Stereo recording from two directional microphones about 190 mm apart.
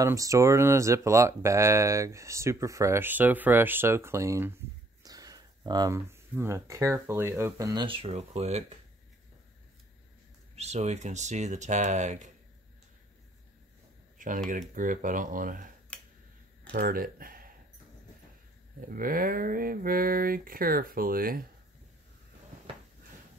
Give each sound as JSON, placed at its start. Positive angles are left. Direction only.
{"t": 0.0, "sound": "speech", "side_deg": -15}
{"t": 10.5, "sound": "speech", "side_deg": -35}
{"t": 14.1, "sound": "computer keyboard", "side_deg": -45}
{"t": 14.5, "sound": "a sound", "side_deg": -45}
{"t": 15.9, "sound": "finger snapping", "side_deg": 5}
{"t": 16.7, "sound": "speech", "side_deg": -50}
{"t": 18.9, "sound": "a sound", "side_deg": -50}